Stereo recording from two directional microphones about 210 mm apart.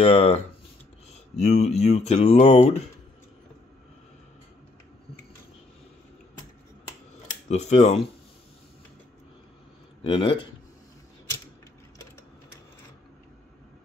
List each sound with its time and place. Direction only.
0.0 s speech: 30° left (ahead or behind)
7.4 s speech: 30° left (ahead or behind)
10.0 s speech: 25° left (ahead or behind)